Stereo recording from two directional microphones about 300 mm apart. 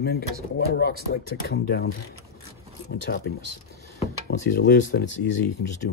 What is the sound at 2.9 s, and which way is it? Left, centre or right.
Speech, left.